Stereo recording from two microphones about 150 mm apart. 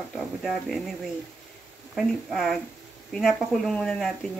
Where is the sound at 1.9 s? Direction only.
Centre (ahead or behind).